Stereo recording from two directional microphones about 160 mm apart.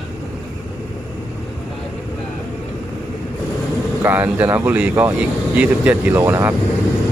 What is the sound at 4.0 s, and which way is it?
Speech, 10° right (ahead or behind).